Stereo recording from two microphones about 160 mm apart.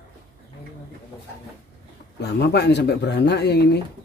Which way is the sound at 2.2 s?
90° left.